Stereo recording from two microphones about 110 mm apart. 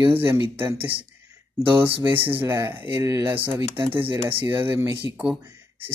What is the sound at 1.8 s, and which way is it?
Speech, 20° right (ahead or behind).